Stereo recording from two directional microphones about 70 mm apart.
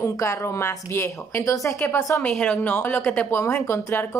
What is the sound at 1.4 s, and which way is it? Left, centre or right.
Speech, left.